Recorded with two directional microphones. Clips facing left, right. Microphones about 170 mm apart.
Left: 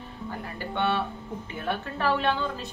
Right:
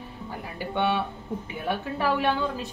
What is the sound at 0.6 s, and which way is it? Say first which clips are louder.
A woman's voice: right 2 dB; 10° right (ahead or behind).